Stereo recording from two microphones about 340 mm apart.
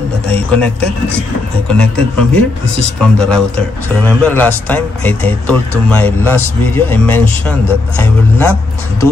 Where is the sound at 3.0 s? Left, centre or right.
Centre.